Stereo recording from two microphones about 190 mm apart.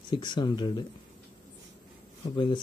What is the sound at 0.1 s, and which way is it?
Speech, 25° left (ahead or behind).